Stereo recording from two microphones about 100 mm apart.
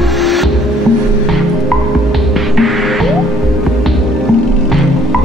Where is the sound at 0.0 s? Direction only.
Centre (ahead or behind).